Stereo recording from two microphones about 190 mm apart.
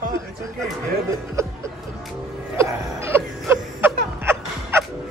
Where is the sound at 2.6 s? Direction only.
15° right (ahead or behind).